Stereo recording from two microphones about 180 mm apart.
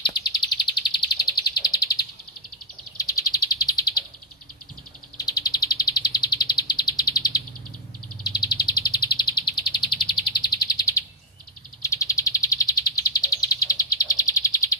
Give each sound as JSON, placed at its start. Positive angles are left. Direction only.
{"t": 0.0, "sound": "bird", "side_deg": 25}
{"t": 5.1, "sound": "bird", "side_deg": 20}
{"t": 8.2, "sound": "chirp", "side_deg": 25}
{"t": 11.8, "sound": "bird", "side_deg": 20}